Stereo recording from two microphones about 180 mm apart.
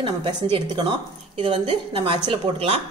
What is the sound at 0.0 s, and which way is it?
A woman's voice, 25° right (ahead or behind).